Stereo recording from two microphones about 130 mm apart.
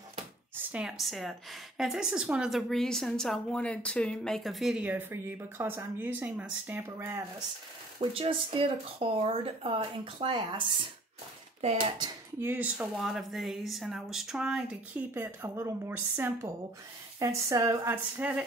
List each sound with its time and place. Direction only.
0.7 s a woman's voice: 5° right (ahead or behind)
4.8 s speech: 15° right (ahead or behind)
8.0 s speech: 45° right (ahead or behind)
12.4 s speech: 15° right (ahead or behind)
12.9 s a woman's voice: centre (ahead or behind)
15.4 s speech: 20° right (ahead or behind)